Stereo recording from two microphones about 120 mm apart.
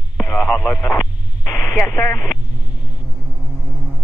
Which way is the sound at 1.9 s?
25° left (ahead or behind).